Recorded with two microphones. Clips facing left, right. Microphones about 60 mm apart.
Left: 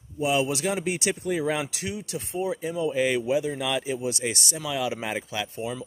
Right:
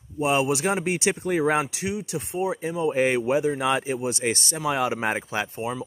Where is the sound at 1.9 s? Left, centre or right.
Right.